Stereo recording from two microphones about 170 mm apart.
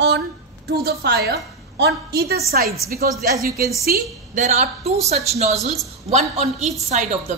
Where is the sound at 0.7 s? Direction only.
70° right (ahead or behind).